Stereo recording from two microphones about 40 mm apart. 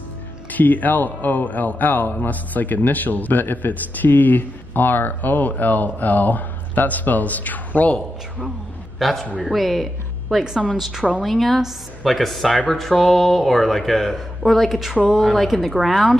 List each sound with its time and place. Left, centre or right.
0.5 s speech: left
9.0 s speech: centre